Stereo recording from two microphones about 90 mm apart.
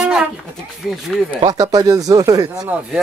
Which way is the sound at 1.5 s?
40° right (ahead or behind).